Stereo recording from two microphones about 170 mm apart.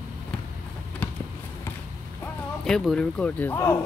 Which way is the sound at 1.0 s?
10° left (ahead or behind).